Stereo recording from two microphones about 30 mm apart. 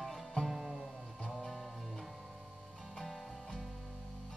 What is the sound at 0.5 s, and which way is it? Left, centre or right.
Music, centre.